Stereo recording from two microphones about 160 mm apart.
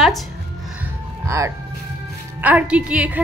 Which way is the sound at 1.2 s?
20° right (ahead or behind).